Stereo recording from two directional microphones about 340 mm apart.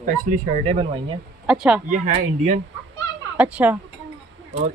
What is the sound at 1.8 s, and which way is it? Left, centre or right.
Speech, right.